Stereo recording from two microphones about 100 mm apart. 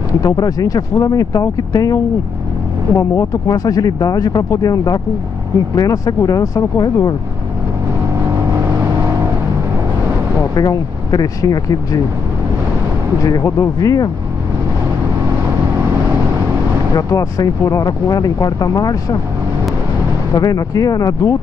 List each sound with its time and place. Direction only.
0.2 s speech: 35° left (ahead or behind)
10.5 s speech: 40° left (ahead or behind)
13.2 s speech: 30° left (ahead or behind)
16.9 s speech: 35° left (ahead or behind)
20.3 s speech: 40° left (ahead or behind)